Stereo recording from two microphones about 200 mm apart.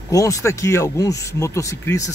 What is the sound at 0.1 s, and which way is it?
Speech, 15° left (ahead or behind).